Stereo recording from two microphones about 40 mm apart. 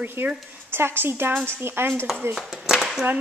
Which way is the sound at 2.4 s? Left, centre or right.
Centre.